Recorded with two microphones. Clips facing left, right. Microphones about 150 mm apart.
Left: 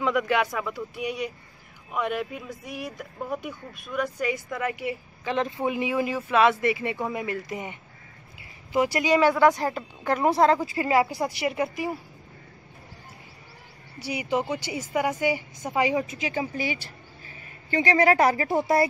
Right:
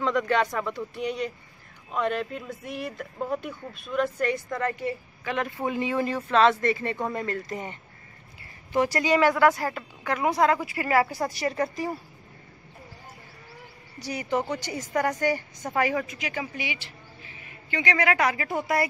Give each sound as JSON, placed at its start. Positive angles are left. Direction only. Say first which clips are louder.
{"t": 0.0, "sound": "a woman's voice", "louder": "even", "side_deg": 5}
{"t": 5.2, "sound": "speech", "louder": "left 3 dB", "side_deg": 25}
{"t": 5.6, "sound": "a woman's voice", "louder": "left 1 dB", "side_deg": 15}
{"t": 14.0, "sound": "a woman's voice", "louder": "left 1 dB", "side_deg": 10}